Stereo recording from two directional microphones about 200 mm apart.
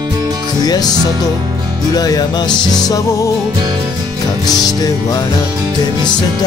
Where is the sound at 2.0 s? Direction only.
20° left (ahead or behind).